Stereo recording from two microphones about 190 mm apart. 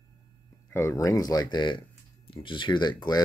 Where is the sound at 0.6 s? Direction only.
15° left (ahead or behind).